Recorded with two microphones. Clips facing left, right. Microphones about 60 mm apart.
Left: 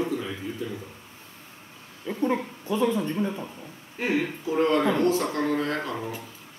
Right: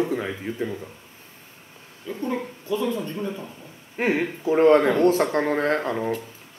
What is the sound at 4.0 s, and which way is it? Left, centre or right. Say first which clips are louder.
Speech: right 3 dB; right.